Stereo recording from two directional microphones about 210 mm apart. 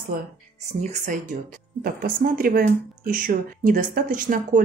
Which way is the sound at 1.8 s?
45° right (ahead or behind).